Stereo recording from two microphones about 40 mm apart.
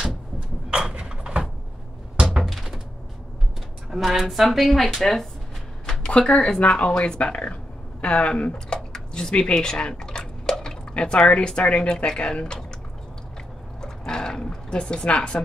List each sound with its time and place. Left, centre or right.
0.7 s a sound: right
4.1 s a woman's voice: centre
6.0 s speech: left
8.6 s a sound: centre
9.3 s speech: left
13.7 s dog: centre
15.0 s speech: left